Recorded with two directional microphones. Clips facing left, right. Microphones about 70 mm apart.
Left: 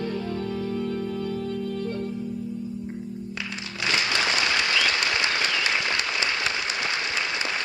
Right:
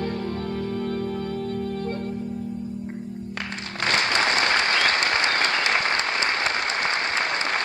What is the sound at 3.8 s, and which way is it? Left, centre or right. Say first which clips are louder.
Applause: right 3 dB; right.